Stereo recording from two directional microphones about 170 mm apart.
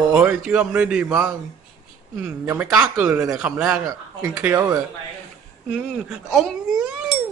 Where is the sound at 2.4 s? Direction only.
10° right (ahead or behind).